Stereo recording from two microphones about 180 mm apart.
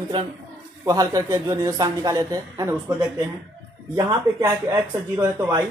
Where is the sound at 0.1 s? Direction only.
25° right (ahead or behind).